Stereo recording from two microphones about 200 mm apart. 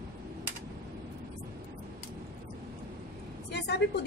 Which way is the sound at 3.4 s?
55° left (ahead or behind).